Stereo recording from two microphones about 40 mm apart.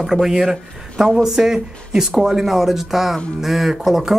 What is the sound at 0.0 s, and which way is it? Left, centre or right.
Speech, centre.